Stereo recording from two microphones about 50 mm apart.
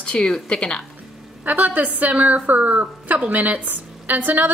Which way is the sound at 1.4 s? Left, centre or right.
Right.